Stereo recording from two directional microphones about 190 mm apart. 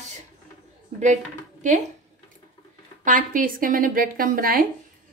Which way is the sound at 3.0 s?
45° right (ahead or behind).